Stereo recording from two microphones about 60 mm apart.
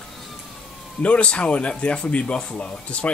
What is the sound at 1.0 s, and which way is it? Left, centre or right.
Speech, centre.